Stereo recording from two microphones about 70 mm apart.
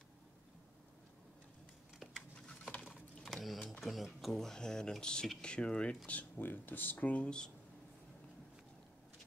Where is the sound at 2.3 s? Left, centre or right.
Centre.